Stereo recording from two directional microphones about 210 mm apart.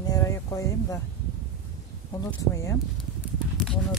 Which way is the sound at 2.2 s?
15° left (ahead or behind).